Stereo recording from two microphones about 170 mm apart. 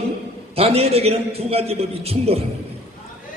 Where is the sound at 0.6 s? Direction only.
35° right (ahead or behind).